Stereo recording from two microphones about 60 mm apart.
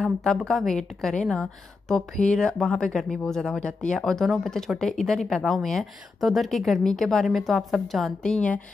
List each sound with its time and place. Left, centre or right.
0.0 s speech: centre
8.2 s speech: centre